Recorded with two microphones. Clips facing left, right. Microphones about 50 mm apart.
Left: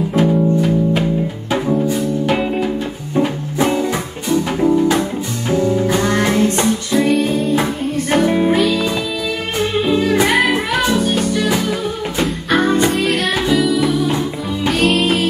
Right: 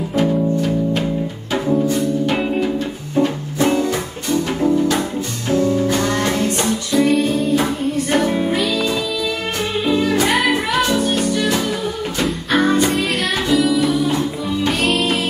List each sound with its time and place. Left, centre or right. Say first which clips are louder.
0.1 s music: left 2 dB; centre
3.2 s music: even; left
3.6 s music: even; centre
6.9 s music: right 1 dB; centre
8.1 s music: left 5 dB; centre
12.2 s music: left 1 dB; centre